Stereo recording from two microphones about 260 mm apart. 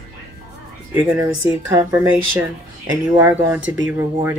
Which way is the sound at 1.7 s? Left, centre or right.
Centre.